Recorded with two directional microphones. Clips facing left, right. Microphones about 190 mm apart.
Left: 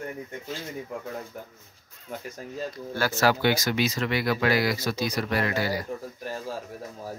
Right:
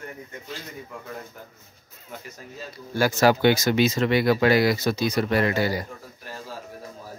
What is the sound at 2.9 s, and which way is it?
Speech, 15° right (ahead or behind).